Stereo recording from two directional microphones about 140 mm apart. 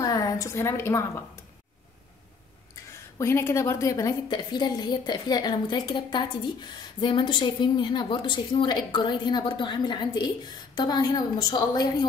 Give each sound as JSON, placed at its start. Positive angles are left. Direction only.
{"t": 0.0, "sound": "a woman's voice", "side_deg": 25}
{"t": 2.9, "sound": "a woman's voice", "side_deg": 20}